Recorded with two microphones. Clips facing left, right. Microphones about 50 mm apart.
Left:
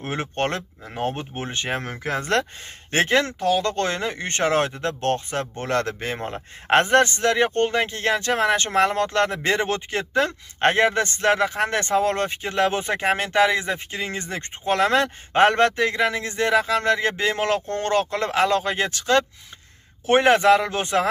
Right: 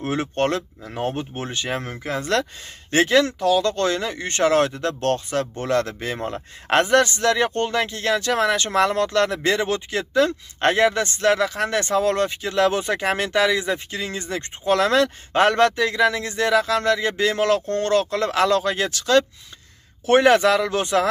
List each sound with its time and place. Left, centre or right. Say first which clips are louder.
0.0 s speech: right 3 dB; left
5.7 s speech: even; left